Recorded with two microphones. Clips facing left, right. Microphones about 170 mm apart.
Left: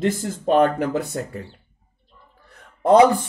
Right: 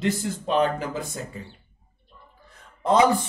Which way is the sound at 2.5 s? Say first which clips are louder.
Left 7 dB; 55° left (ahead or behind).